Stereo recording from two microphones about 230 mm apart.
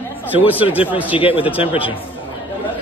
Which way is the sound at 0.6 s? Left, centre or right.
Centre.